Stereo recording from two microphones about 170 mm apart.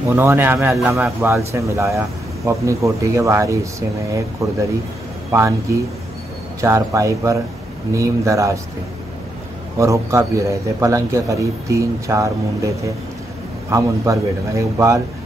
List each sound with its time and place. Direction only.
0.1 s a man's voice: 15° right (ahead or behind)
9.8 s a man's voice: 20° right (ahead or behind)